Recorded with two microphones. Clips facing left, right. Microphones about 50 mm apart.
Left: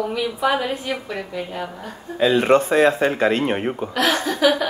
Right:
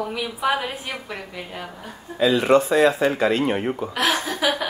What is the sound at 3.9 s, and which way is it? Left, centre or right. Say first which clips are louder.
Speech: left 4 dB; centre.